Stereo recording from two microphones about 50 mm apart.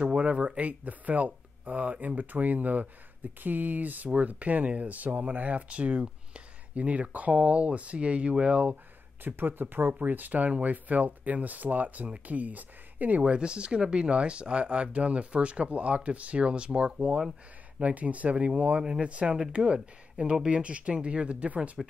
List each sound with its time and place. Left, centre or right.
0.0 s speech: right
9.2 s speech: right
13.2 s speech: right